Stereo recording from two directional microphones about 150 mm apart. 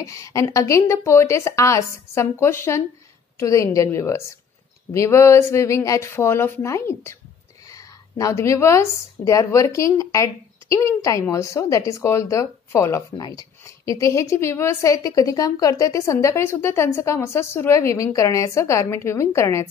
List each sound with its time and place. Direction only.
0.0 s a woman's voice: 20° left (ahead or behind)